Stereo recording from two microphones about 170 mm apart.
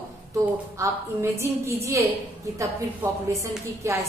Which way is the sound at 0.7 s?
15° right (ahead or behind).